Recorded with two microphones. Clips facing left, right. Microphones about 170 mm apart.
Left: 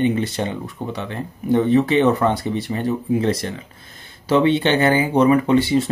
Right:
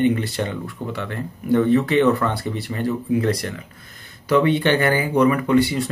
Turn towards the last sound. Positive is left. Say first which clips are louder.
# left 3 dB
turn(degrees=25)  # may be behind; listen again after turning